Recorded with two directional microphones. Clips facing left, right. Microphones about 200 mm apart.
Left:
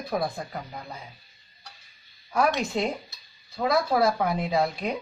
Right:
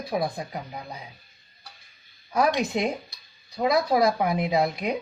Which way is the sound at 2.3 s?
15° right (ahead or behind).